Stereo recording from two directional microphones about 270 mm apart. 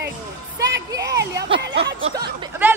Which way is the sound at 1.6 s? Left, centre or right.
Right.